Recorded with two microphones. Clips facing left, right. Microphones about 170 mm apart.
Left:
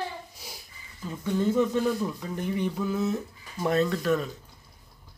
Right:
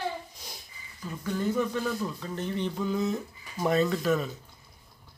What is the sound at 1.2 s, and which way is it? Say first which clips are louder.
Speech: left 4 dB; 20° left (ahead or behind).